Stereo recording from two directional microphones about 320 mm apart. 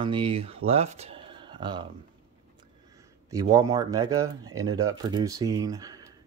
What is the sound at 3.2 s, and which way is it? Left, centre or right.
Speech, centre.